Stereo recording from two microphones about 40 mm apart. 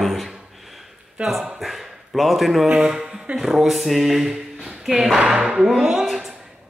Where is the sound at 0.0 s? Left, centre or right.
Centre.